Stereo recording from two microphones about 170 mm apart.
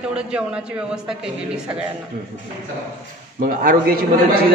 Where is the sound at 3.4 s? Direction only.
55° right (ahead or behind).